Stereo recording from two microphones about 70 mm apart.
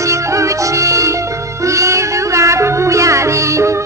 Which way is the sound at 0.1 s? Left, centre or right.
Right.